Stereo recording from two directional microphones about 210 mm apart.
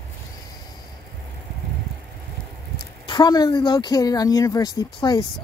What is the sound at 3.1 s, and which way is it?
Speech, 20° left (ahead or behind).